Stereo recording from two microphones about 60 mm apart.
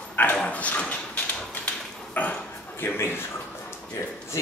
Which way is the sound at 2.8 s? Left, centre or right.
Left.